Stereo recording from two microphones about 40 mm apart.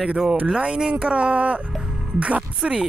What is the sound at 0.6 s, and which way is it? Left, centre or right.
Speech, right.